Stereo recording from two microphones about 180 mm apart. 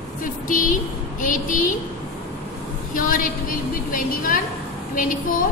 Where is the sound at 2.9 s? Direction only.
50° left (ahead or behind).